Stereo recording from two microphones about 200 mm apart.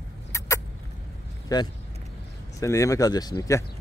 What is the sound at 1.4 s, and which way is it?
Speech, 20° left (ahead or behind).